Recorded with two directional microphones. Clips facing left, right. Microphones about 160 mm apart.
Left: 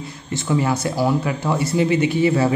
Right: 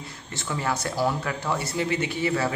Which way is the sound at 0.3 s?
15° left (ahead or behind).